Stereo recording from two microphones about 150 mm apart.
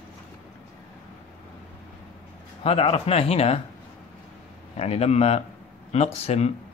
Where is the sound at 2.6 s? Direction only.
40° left (ahead or behind).